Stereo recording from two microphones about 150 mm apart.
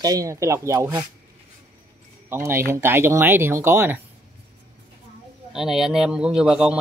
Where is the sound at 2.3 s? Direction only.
15° right (ahead or behind).